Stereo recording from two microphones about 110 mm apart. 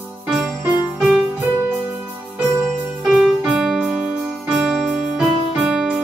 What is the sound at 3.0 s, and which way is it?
Music, 5° right (ahead or behind).